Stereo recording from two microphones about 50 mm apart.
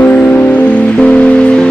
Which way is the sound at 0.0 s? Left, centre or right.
Left.